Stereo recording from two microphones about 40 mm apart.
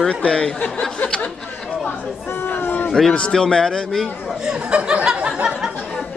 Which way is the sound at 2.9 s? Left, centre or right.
Centre.